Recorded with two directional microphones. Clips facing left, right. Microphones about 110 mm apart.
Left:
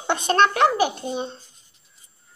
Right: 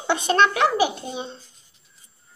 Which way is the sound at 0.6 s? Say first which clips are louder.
Left 1 dB; 10° right (ahead or behind).